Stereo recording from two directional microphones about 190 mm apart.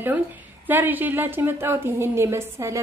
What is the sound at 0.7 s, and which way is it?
A woman's voice, 10° right (ahead or behind).